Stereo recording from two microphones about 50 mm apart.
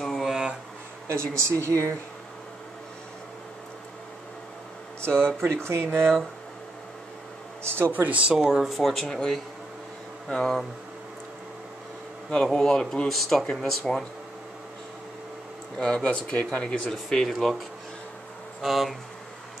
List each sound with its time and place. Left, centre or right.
0.0 s a sound: centre
1.0 s speech: right
5.0 s speech: right
7.6 s speech: right
7.9 s speech: right
8.4 s speech: centre
8.7 s speech: centre
10.3 s speech: centre
12.5 s speech: centre
13.1 s speech: centre
15.8 s speech: centre
16.9 s speech: centre
18.6 s speech: centre